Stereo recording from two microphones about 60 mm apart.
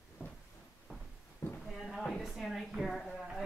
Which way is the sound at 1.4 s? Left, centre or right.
Left.